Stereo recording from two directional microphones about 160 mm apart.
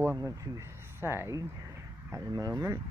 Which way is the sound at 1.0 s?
15° right (ahead or behind).